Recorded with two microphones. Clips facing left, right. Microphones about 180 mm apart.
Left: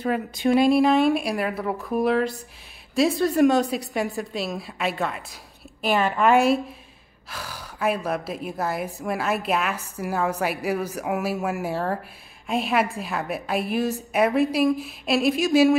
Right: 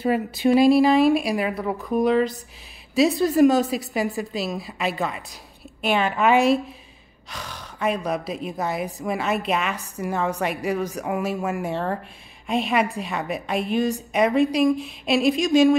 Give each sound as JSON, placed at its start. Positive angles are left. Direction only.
{"t": 0.0, "sound": "a woman's voice", "side_deg": -5}